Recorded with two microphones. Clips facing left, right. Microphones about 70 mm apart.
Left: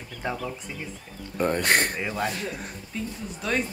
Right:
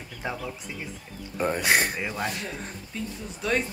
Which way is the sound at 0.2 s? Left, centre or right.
Centre.